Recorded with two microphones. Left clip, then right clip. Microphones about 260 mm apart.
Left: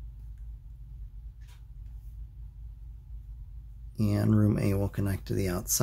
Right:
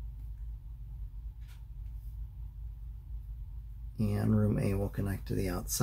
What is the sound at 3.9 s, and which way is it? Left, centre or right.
Speech, left.